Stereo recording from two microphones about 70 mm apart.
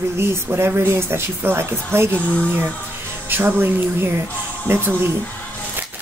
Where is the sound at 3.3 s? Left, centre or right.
Right.